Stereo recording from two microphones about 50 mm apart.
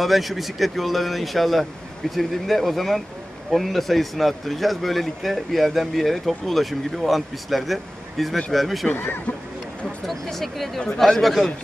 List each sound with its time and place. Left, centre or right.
0.0 s a man's voice: centre
8.9 s speech: left
10.0 s a man's voice: centre